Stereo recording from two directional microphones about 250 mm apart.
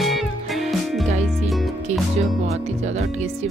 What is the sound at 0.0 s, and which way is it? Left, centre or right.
Music, centre.